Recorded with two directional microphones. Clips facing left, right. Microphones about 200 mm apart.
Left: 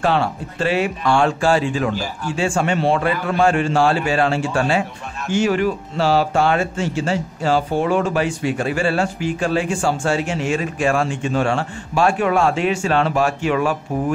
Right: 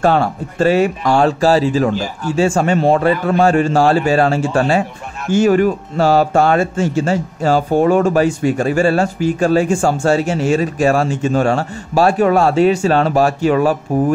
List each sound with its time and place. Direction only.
0.0 s speech: 45° right (ahead or behind)